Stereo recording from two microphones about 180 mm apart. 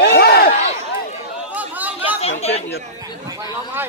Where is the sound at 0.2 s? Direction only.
60° left (ahead or behind).